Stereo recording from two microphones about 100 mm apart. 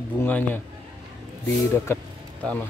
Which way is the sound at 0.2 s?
20° left (ahead or behind).